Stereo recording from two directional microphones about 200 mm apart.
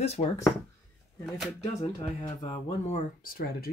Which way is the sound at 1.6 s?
25° left (ahead or behind).